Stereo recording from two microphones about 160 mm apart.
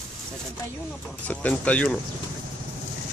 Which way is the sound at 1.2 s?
10° left (ahead or behind).